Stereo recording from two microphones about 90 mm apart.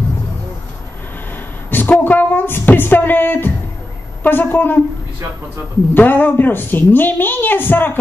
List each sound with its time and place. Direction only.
1.7 s music: 20° left (ahead or behind)
4.2 s a woman's voice: 20° left (ahead or behind)
5.9 s a woman's voice: 20° left (ahead or behind)